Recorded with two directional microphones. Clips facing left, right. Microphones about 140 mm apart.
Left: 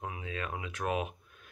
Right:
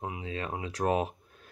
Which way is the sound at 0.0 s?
25° right (ahead or behind).